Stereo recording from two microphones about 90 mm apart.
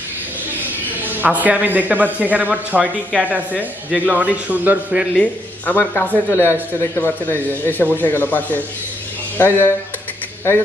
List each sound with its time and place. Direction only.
1.0 s speech: 20° right (ahead or behind)
5.1 s speech: 15° left (ahead or behind)